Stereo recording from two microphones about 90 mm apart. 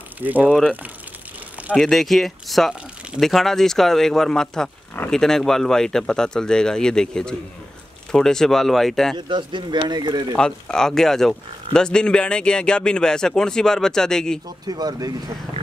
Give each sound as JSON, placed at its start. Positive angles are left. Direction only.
{"t": 0.2, "sound": "speech", "side_deg": -15}
{"t": 1.8, "sound": "speech", "side_deg": 5}
{"t": 9.3, "sound": "speech", "side_deg": -60}
{"t": 10.3, "sound": "speech", "side_deg": 10}
{"t": 14.7, "sound": "speech", "side_deg": -45}